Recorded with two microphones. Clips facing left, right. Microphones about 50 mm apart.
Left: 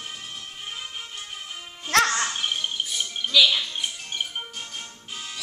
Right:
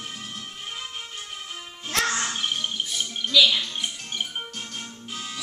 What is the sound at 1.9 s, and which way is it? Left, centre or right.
Speech, left.